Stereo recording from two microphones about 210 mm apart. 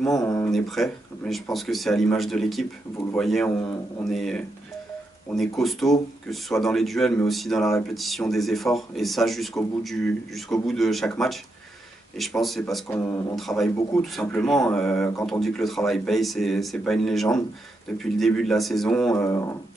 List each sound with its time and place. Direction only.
0.1 s speech: 15° left (ahead or behind)
0.5 s speech: centre (ahead or behind)
12.8 s speech: 10° left (ahead or behind)
13.4 s speech: centre (ahead or behind)